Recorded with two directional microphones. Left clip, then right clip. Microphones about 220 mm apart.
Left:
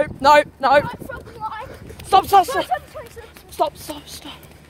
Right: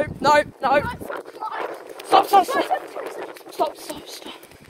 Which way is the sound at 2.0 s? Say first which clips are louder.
Left 2 dB; 30° left (ahead or behind).